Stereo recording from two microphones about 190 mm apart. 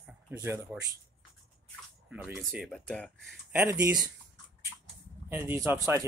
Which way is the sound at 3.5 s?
15° right (ahead or behind).